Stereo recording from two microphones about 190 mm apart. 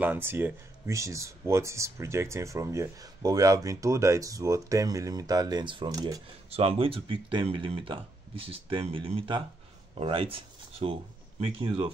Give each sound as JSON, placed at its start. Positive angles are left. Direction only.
{"t": 0.0, "sound": "speech", "side_deg": -10}
{"t": 6.5, "sound": "speech", "side_deg": -30}